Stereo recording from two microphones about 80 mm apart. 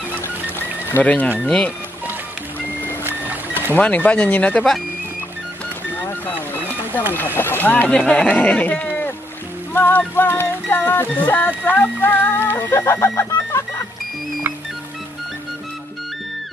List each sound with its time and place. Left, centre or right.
0.6 s a sound: left
1.4 s speech: centre
3.0 s vehicle: right
3.7 s speech: centre
6.9 s speech: right
7.3 s music: left
7.9 s music: centre; by 13.8 s left